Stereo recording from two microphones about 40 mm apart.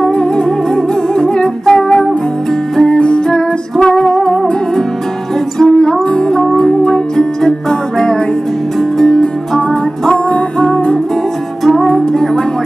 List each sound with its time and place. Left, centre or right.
0.0 s music: left
1.1 s humming: left
2.8 s music: left
5.7 s music: left
9.0 s music: left